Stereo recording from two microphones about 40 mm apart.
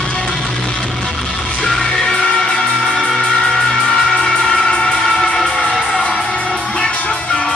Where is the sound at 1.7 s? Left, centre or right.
Centre.